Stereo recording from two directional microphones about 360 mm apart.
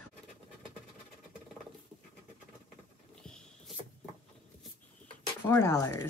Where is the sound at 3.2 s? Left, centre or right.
Centre.